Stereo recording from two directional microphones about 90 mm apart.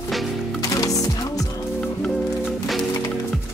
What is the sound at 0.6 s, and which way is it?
Music, 40° left (ahead or behind).